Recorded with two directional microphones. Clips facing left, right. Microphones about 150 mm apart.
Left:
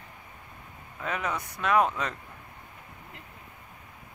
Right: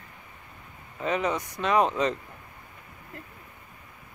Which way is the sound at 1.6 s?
5° left (ahead or behind).